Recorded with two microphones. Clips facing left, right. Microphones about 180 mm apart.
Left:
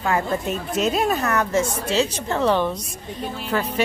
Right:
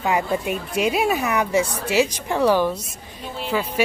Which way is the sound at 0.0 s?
15° right (ahead or behind).